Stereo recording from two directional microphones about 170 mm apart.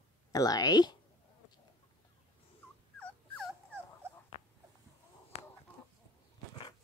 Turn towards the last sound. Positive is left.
turn(degrees=40)  # may be behind; listen again after turning